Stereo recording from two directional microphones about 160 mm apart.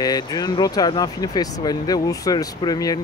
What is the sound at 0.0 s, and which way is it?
Speech, 25° left (ahead or behind).